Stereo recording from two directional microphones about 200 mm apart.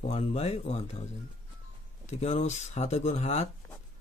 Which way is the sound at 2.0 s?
35° left (ahead or behind).